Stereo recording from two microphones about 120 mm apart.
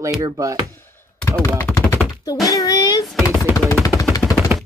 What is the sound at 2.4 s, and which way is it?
Speech, 30° left (ahead or behind).